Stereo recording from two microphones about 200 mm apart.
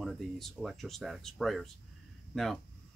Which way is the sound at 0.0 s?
Centre (ahead or behind).